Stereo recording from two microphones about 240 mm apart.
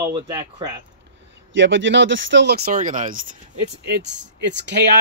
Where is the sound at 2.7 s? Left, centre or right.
Right.